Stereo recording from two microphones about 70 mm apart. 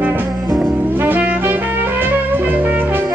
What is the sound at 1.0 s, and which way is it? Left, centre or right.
Music, right.